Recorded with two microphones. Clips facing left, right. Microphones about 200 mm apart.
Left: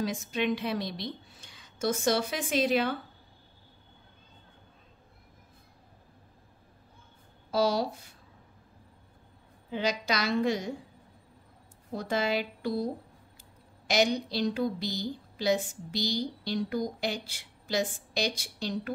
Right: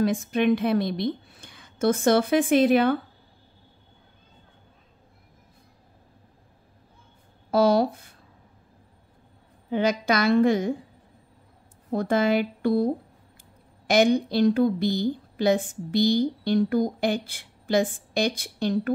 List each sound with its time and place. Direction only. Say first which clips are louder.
0.0 s a woman's voice: right 8 dB; 55° right (ahead or behind)
7.5 s a woman's voice: right 7 dB; 55° right (ahead or behind)
9.7 s a woman's voice: right 7 dB; 55° right (ahead or behind)
11.9 s a woman's voice: right 7 dB; 55° right (ahead or behind)